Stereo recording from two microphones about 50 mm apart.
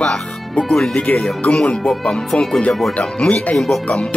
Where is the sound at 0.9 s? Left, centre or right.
Left.